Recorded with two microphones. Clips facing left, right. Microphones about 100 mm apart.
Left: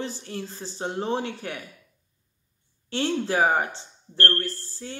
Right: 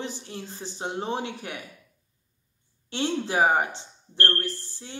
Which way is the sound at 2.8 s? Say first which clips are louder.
Left 2 dB; 20° right (ahead or behind).